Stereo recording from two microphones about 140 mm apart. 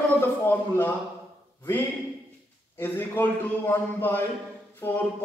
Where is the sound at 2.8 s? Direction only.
15° left (ahead or behind).